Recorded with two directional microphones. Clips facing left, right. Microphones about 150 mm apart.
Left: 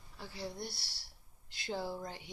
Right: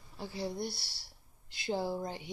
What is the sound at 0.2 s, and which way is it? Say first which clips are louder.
Speech: right 6 dB; 20° right (ahead or behind).